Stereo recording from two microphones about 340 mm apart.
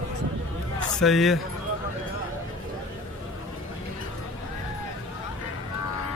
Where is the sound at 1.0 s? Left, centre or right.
Centre.